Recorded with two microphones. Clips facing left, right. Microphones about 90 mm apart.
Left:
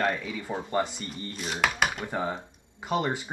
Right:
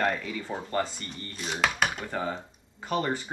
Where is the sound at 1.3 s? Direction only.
Centre (ahead or behind).